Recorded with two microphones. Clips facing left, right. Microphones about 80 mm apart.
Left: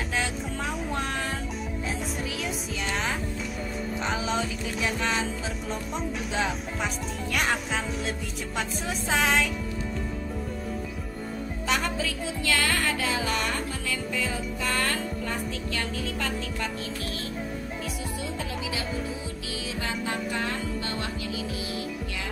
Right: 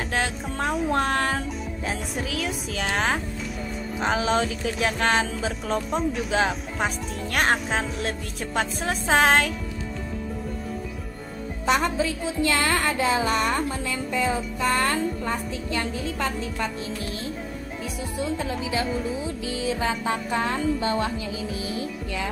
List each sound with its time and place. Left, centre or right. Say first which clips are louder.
0.1 s music: right 3 dB; right
0.7 s music: right 9 dB; centre
2.1 s music: right 4 dB; centre
2.7 s music: right 6 dB; right
4.0 s music: right 7 dB; right
5.9 s speech: right 6 dB; centre
6.8 s music: right 3 dB; right
8.5 s music: right 5 dB; right
11.6 s music: right 6 dB; right
18.4 s speech: right 6 dB; right
19.6 s music: right 7 dB; right